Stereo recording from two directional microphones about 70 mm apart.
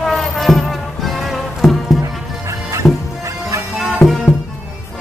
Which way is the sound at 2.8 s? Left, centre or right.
Centre.